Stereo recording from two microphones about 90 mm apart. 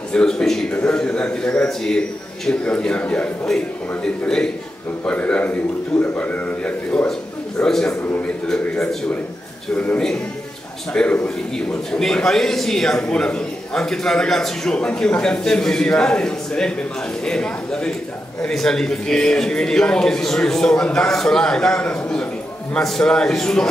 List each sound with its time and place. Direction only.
0.1 s a man's voice: 10° left (ahead or behind)